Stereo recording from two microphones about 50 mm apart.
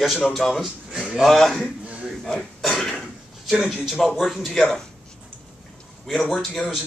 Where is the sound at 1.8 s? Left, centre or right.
Right.